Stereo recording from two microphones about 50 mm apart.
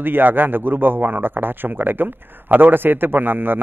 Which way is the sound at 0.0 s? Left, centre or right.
Right.